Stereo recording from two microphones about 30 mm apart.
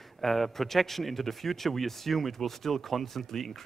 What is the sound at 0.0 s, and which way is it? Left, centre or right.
A man's voice, centre.